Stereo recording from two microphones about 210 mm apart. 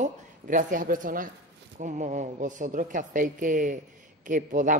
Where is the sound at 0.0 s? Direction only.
40° right (ahead or behind).